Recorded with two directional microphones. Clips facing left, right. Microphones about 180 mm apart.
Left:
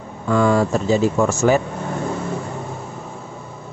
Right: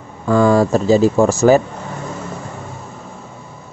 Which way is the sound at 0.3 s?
40° right (ahead or behind).